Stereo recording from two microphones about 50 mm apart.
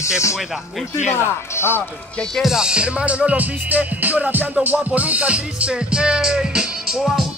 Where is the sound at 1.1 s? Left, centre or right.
Left.